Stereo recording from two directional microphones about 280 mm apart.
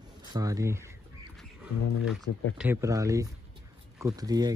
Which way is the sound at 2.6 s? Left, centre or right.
Centre.